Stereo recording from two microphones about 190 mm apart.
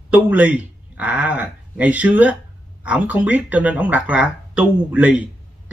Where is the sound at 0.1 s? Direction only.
5° right (ahead or behind).